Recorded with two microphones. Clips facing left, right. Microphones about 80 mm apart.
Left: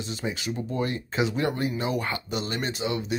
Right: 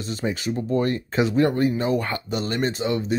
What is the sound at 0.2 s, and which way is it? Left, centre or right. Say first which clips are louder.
Speech: right 6 dB; right.